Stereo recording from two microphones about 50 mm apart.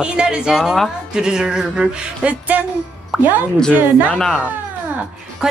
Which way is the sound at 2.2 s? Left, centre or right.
Right.